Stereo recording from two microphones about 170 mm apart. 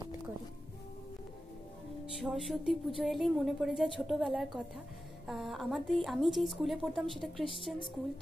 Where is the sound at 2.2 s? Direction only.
Centre (ahead or behind).